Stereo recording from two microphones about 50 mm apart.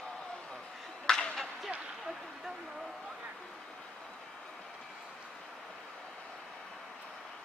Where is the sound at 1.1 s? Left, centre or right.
Centre.